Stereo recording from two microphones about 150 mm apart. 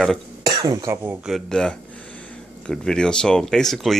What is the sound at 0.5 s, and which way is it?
Speech, 25° right (ahead or behind).